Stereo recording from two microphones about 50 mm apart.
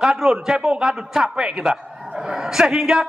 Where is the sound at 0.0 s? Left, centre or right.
Centre.